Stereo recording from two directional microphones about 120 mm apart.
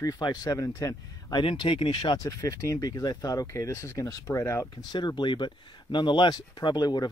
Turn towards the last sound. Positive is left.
turn(degrees=35)  # may be behind; listen again after turning